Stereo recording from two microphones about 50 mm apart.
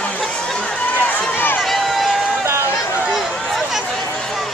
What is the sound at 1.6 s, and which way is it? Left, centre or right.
Run, centre.